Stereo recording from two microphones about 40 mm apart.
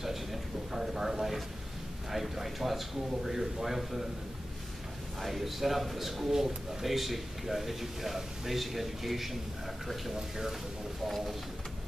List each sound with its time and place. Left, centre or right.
0.0 s a sound: centre
2.0 s speech: centre
5.2 s a man's voice: centre
11.1 s a man's voice: centre